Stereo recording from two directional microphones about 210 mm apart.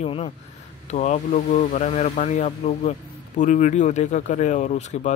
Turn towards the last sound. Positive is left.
turn(degrees=35)  # may be behind; listen again after turning